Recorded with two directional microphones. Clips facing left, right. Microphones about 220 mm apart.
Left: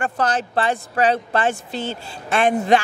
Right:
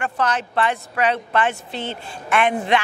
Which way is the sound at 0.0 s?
35° left (ahead or behind).